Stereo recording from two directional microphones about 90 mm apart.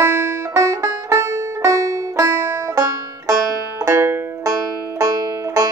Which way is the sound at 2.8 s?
40° right (ahead or behind).